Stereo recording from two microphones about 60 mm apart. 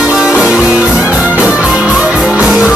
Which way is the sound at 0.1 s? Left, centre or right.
Centre.